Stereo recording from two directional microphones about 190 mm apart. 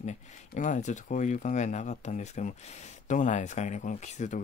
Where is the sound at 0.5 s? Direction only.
40° left (ahead or behind).